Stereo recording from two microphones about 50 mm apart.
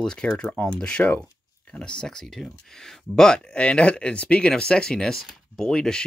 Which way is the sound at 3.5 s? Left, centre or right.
Left.